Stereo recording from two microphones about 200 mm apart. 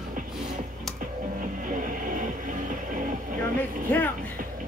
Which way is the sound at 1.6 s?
40° right (ahead or behind).